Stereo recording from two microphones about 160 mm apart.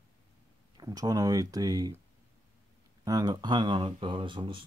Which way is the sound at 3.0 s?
25° right (ahead or behind).